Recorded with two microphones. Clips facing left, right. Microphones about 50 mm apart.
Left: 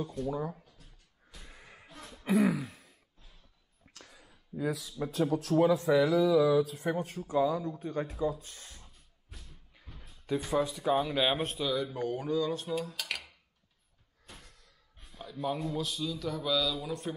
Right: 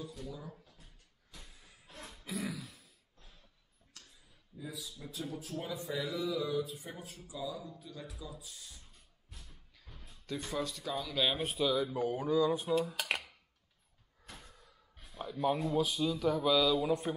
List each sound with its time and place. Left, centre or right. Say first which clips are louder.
0.0 s speech: left 11 dB; left
1.4 s vehicle: left 7 dB; left
2.2 s throat clearing: left 13 dB; left
4.0 s a sound: left 8 dB; left
4.9 s speech: left 14 dB; left
5.4 s speech: left 15 dB; left
6.9 s speech: left 14 dB; left
9.9 s music: left 8 dB; centre
10.9 s speech: left 10 dB; left
11.1 s speech: left 4 dB; centre
11.4 s a man's voice: even; centre
12.9 s speech: right 2 dB; right
14.4 s door: right 1 dB; centre
15.2 s a man's voice: right 2 dB; centre